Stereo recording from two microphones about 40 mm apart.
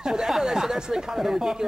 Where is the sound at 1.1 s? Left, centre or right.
Centre.